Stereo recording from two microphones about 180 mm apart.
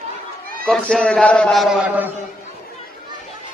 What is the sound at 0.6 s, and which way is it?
A man's voice, 5° left (ahead or behind).